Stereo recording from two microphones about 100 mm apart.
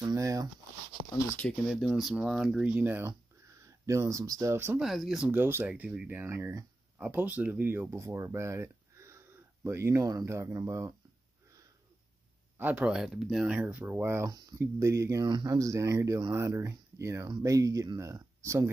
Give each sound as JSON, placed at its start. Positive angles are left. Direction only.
{"t": 0.0, "sound": "speech", "side_deg": -35}
{"t": 1.7, "sound": "speech", "side_deg": 0}
{"t": 2.8, "sound": "speech", "side_deg": -20}
{"t": 4.7, "sound": "speech", "side_deg": -5}
{"t": 5.3, "sound": "speech", "side_deg": -20}
{"t": 6.0, "sound": "speech", "side_deg": -25}
{"t": 7.0, "sound": "speech", "side_deg": -15}
{"t": 12.5, "sound": "speech", "side_deg": -15}
{"t": 12.9, "sound": "speech", "side_deg": -5}
{"t": 13.8, "sound": "speech", "side_deg": -25}
{"t": 15.2, "sound": "speech", "side_deg": -40}